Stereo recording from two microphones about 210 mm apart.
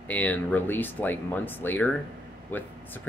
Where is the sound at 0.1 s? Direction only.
5° left (ahead or behind).